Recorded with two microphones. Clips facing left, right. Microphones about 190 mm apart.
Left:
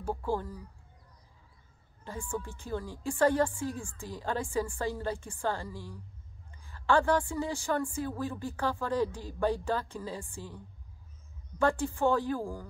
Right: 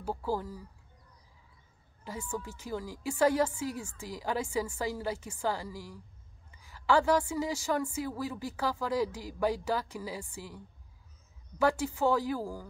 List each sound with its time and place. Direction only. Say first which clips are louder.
0.0 s a woman's voice: left 1 dB; 10° right (ahead or behind)
2.0 s a woman's voice: left 1 dB; 10° right (ahead or behind)